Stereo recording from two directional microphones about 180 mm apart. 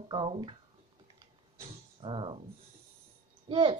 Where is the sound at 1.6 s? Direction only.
30° right (ahead or behind).